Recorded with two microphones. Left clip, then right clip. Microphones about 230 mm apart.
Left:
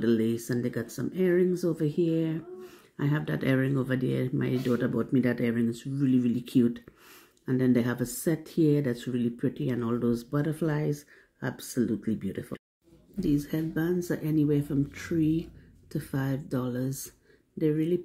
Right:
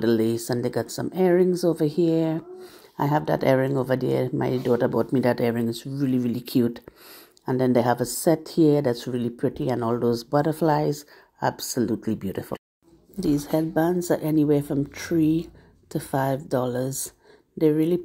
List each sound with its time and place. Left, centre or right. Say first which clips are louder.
0.0 s speech: right 5 dB; centre